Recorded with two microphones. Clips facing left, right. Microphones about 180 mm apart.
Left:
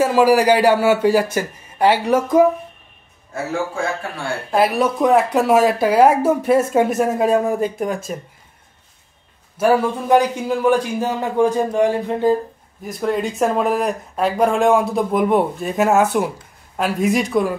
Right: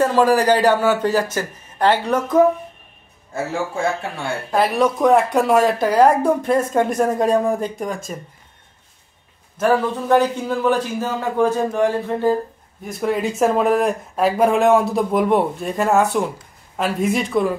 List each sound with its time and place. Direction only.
0.0 s a man's voice: 10° left (ahead or behind)
4.5 s speech: 5° left (ahead or behind)
9.6 s a man's voice: 10° left (ahead or behind)
12.8 s speech: centre (ahead or behind)